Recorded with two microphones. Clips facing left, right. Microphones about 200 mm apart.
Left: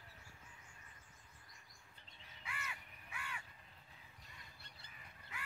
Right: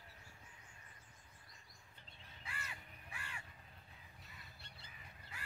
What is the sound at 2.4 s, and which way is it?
Crow, 35° right (ahead or behind).